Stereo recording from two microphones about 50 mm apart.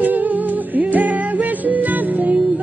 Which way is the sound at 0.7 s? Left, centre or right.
Right.